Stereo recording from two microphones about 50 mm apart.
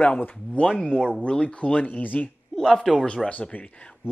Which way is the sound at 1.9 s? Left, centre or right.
Left.